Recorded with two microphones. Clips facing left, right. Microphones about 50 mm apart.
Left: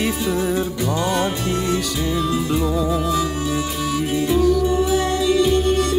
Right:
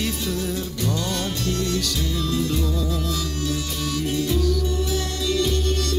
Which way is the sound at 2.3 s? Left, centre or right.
Centre.